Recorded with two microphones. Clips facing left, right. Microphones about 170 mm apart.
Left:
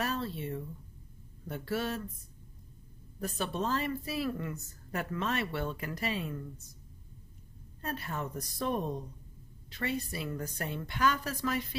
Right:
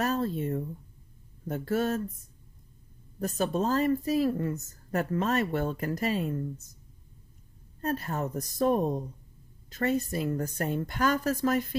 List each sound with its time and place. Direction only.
0.0 s a woman's voice: 45° right (ahead or behind)
3.2 s a woman's voice: 40° right (ahead or behind)
7.8 s a woman's voice: 40° right (ahead or behind)